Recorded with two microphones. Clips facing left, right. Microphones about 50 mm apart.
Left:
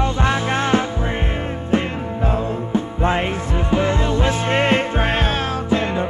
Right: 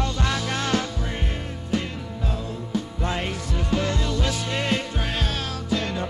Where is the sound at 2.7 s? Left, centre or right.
Left.